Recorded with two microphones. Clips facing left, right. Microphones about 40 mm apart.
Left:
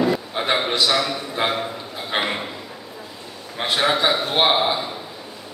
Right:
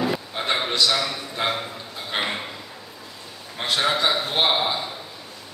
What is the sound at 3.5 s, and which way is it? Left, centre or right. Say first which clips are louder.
Speech: left 3 dB; centre.